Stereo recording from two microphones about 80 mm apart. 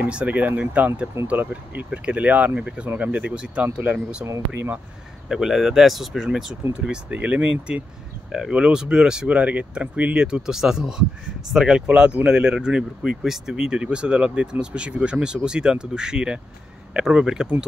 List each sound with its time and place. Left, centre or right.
0.0 s speech: centre
4.5 s speech: right
5.3 s speech: centre